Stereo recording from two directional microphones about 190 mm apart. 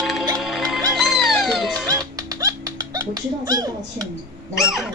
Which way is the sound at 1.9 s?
20° right (ahead or behind).